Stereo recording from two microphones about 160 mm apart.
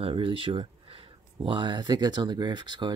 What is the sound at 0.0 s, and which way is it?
Speech, 35° right (ahead or behind).